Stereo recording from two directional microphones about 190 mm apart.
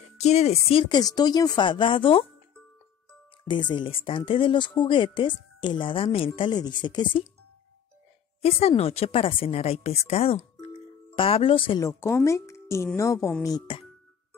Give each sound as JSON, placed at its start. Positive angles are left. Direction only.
{"t": 0.2, "sound": "speech", "side_deg": 35}
{"t": 3.4, "sound": "speech", "side_deg": 25}
{"t": 8.4, "sound": "speech", "side_deg": 30}
{"t": 11.8, "sound": "speech", "side_deg": 15}